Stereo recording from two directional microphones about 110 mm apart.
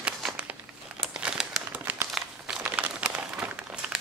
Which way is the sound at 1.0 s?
10° right (ahead or behind).